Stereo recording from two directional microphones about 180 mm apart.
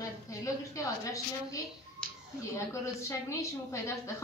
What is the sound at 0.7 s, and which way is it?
A woman's voice, 20° left (ahead or behind).